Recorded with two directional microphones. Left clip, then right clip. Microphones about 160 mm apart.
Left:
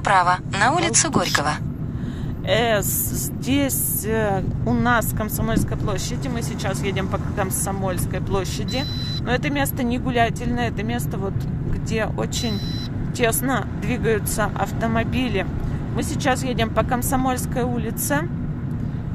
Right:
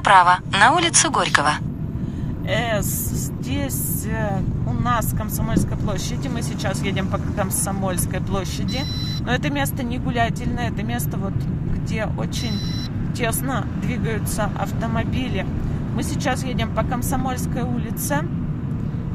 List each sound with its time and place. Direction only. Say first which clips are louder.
0.0 s speech: right 4 dB; centre (ahead or behind)
2.5 s speech: left 3 dB; 25° left (ahead or behind)
6.6 s speech: even; centre (ahead or behind); by 18.2 s 20° left (ahead or behind)